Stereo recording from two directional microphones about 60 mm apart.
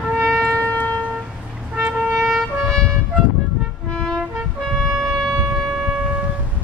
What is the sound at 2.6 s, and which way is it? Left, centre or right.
Trumpet, centre.